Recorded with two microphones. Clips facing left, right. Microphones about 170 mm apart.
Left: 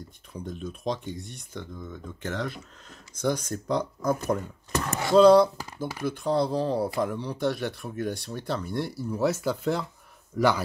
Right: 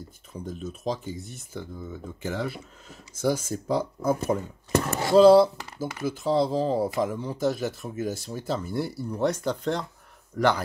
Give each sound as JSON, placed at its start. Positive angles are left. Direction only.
{"t": 0.3, "sound": "speech", "side_deg": -5}
{"t": 4.7, "sound": "speech", "side_deg": -30}
{"t": 5.1, "sound": "speech", "side_deg": -5}